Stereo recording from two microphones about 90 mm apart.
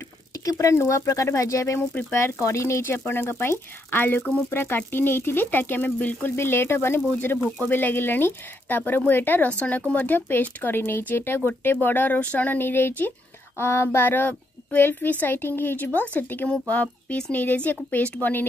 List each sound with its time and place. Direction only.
0.5 s speech: 35° left (ahead or behind); by 18.5 s 20° left (ahead or behind)